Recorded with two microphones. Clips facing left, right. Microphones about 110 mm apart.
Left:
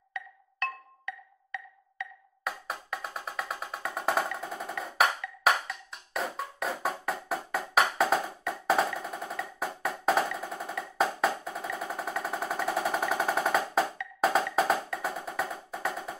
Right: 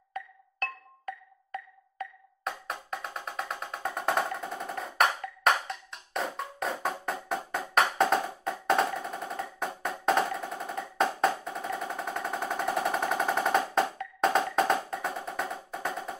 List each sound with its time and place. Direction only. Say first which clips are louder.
0.1 s music: right 2 dB; 40° right (ahead or behind)
2.4 s music: even; centre (ahead or behind)
9.8 s drum: even; centre (ahead or behind)
11.0 s percussion: right 1 dB; 5° left (ahead or behind)
11.8 s a sound: even; centre (ahead or behind)
12.2 s music: even; centre (ahead or behind)